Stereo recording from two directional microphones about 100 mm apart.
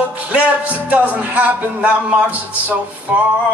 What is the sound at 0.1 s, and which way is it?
Music, 15° right (ahead or behind).